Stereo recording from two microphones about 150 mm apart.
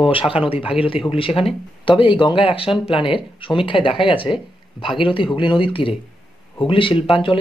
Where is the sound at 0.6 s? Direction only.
10° right (ahead or behind).